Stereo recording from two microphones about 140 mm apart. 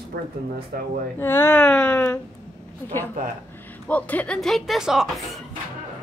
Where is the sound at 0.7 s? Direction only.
90° right.